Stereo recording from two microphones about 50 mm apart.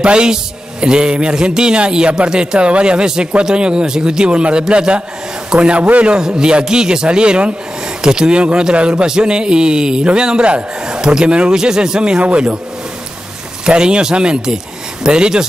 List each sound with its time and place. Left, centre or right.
0.0 s speech: centre
6.1 s a man's voice: centre
12.2 s speech: right
13.7 s a man's voice: centre